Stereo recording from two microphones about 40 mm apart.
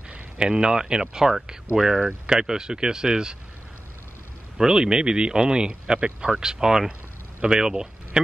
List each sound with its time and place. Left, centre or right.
0.4 s speech: centre
4.6 s speech: centre
6.4 s speech: centre